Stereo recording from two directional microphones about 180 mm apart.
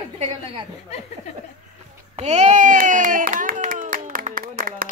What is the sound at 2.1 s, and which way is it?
Clapping, 40° right (ahead or behind).